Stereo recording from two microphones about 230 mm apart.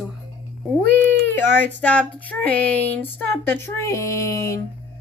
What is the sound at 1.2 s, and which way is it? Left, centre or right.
Speech, centre.